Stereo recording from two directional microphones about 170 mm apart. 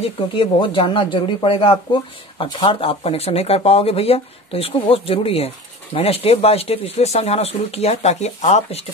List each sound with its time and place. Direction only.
0.0 s speech: 30° left (ahead or behind)